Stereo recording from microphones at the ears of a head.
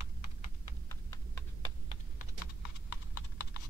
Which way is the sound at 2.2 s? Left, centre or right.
Left.